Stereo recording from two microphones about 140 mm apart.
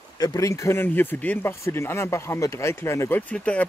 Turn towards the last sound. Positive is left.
turn(degrees=10)  # may be behind; listen again after turning